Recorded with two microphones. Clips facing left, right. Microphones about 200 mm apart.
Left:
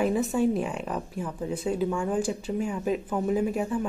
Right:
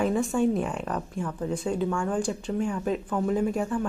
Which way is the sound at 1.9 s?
15° left (ahead or behind).